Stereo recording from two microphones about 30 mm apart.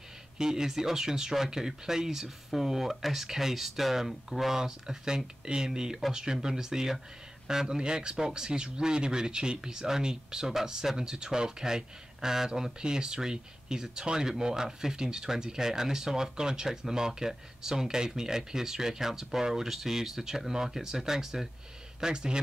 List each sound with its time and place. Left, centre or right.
0.4 s speech: right
22.0 s speech: right